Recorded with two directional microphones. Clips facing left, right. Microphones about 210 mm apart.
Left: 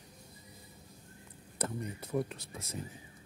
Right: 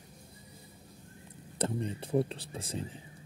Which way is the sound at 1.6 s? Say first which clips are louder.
Right 5 dB; 30° right (ahead or behind).